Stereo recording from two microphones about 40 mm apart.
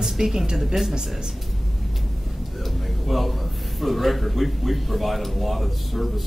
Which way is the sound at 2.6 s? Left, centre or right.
Centre.